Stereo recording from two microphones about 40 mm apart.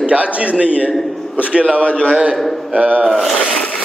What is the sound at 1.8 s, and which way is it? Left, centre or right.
Speech, left.